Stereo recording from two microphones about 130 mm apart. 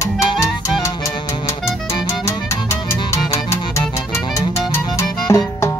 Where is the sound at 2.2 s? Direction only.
20° left (ahead or behind).